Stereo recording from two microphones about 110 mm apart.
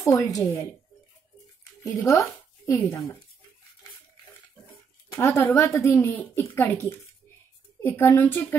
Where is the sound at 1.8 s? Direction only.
30° left (ahead or behind).